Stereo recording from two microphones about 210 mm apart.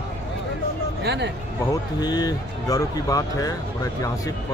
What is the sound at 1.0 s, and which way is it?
Speech, 55° right (ahead or behind).